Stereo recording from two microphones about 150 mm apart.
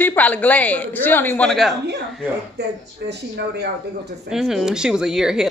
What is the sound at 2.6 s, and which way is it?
Speech, 90° right.